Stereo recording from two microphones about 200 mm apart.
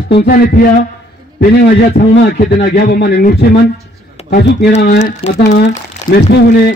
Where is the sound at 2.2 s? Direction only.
50° left (ahead or behind).